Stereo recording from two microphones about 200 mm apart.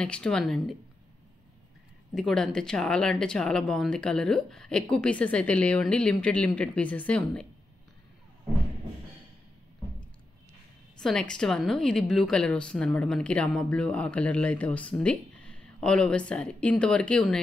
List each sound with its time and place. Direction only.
0.0 s a woman's voice: 5° left (ahead or behind)
2.1 s a woman's voice: centre (ahead or behind)
11.0 s a woman's voice: 5° left (ahead or behind)